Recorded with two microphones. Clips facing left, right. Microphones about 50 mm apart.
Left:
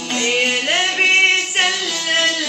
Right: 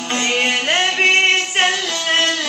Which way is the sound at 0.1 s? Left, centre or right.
Right.